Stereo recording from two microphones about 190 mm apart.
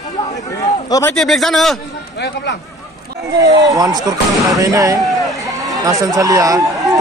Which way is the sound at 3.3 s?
15° right (ahead or behind).